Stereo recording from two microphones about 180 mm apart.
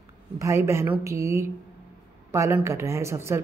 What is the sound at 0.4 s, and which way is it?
Speech, 15° right (ahead or behind).